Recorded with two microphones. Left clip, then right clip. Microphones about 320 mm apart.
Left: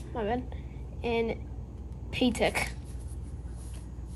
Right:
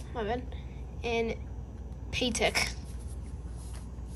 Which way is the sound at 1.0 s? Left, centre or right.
Centre.